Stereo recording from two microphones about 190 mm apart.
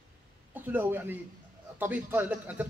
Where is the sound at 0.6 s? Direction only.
10° right (ahead or behind).